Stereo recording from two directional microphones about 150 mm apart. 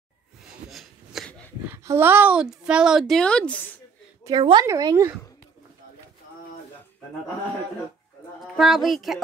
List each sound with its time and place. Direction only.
0.7 s rub: centre (ahead or behind)
1.7 s a woman's voice: 15° right (ahead or behind); by 3.7 s 10° left (ahead or behind)
4.2 s a woman's voice: 30° right (ahead or behind)
8.5 s a woman's voice: centre (ahead or behind)